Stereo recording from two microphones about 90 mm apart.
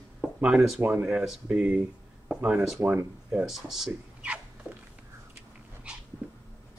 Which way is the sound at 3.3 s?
5° right (ahead or behind).